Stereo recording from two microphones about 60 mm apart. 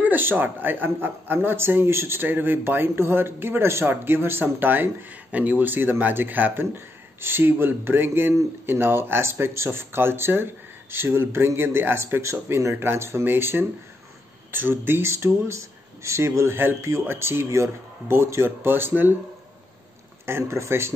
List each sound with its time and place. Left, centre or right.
0.0 s speech: right
20.2 s speech: right